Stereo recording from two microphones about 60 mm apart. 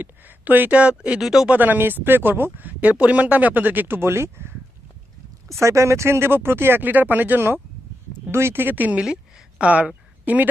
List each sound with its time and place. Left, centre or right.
0.0 s speech: right
1.2 s speech: centre
1.5 s speech: right
5.5 s speech: right